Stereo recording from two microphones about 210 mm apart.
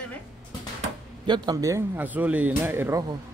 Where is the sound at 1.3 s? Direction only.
20° right (ahead or behind).